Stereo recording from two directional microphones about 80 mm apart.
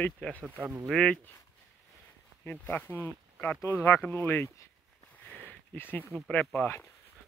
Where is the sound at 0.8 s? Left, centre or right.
Centre.